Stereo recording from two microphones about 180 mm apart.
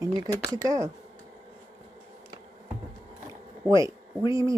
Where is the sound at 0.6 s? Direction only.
20° right (ahead or behind).